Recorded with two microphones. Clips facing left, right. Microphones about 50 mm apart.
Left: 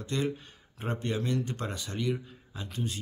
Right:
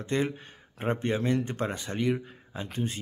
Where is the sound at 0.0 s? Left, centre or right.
Right.